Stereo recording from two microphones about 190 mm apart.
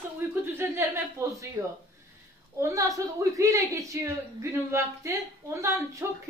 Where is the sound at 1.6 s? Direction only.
15° right (ahead or behind).